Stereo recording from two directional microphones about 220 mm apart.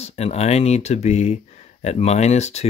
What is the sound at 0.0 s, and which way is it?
Speech, 30° left (ahead or behind).